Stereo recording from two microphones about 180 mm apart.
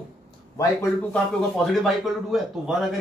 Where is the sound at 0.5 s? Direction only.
15° left (ahead or behind).